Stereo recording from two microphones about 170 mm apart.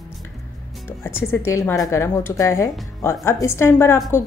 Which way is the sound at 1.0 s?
15° left (ahead or behind).